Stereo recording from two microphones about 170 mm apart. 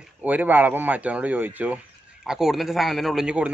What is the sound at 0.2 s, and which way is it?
A man's voice, 10° right (ahead or behind).